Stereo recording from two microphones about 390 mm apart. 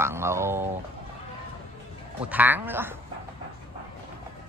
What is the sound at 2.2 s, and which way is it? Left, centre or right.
Speech, centre.